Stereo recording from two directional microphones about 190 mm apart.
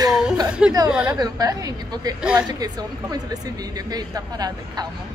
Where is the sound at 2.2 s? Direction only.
5° right (ahead or behind).